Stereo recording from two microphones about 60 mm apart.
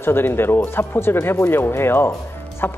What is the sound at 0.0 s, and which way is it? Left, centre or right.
Speech, left.